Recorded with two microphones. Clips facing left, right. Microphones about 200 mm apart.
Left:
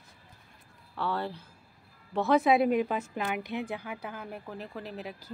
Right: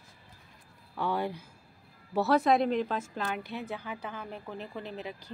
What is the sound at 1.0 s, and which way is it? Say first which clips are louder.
Speech: right 1 dB; 15° right (ahead or behind).